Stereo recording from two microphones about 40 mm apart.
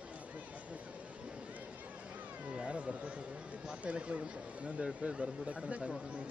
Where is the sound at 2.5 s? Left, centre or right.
Right.